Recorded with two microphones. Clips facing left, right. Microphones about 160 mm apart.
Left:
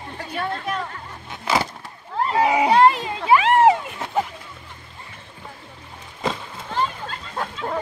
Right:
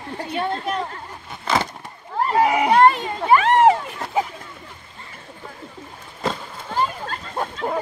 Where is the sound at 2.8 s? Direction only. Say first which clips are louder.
Right 1 dB; 5° left (ahead or behind).